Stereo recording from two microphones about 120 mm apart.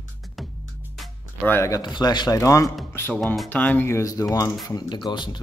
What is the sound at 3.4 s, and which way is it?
Speech, 15° left (ahead or behind).